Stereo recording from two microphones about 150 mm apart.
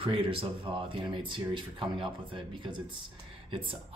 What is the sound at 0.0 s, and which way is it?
Speech, 35° right (ahead or behind).